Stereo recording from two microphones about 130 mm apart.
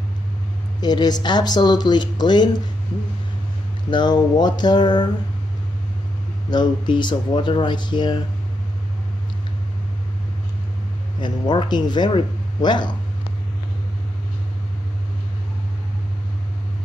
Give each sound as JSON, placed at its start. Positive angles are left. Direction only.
{"t": 0.7, "sound": "speech", "side_deg": 35}
{"t": 3.9, "sound": "speech", "side_deg": 35}
{"t": 6.5, "sound": "speech", "side_deg": 35}
{"t": 11.1, "sound": "speech", "side_deg": 35}